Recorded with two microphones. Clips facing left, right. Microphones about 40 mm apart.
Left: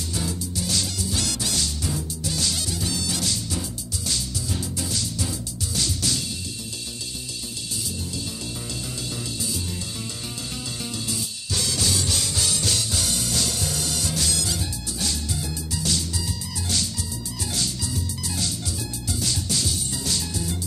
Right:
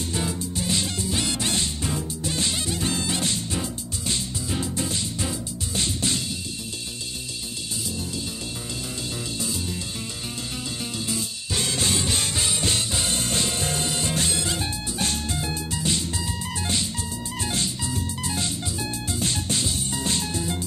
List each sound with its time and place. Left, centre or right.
0.1 s music: right
11.1 s music: right
17.4 s music: right